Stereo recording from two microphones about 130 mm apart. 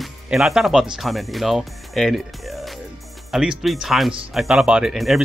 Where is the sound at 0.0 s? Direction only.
Centre (ahead or behind).